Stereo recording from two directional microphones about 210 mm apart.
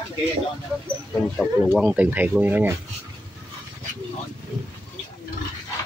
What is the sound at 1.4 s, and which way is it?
Speech, 5° left (ahead or behind).